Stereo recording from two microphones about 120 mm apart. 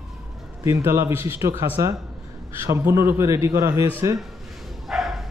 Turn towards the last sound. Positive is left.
turn(degrees=0)  # may be behind; listen again after turning